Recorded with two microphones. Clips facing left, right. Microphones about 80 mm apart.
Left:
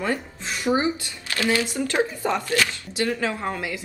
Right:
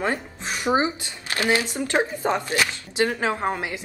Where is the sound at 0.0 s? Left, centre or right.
Right.